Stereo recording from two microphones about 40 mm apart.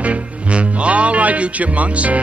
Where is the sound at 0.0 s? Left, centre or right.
Right.